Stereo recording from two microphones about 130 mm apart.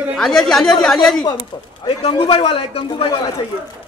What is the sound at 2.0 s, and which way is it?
A man's voice, 45° left (ahead or behind).